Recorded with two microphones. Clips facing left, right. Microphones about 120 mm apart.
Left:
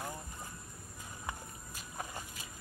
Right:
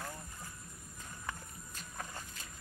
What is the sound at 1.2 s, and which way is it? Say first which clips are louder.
Rowboat: left 2 dB; 15° left (ahead or behind).